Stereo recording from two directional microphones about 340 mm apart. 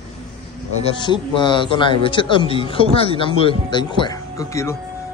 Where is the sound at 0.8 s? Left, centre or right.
Centre.